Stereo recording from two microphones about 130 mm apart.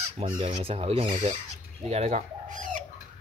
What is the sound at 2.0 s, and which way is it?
Bird, 80° right.